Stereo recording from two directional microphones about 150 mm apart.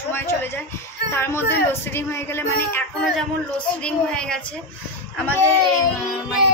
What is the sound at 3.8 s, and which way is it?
Speech, 5° left (ahead or behind).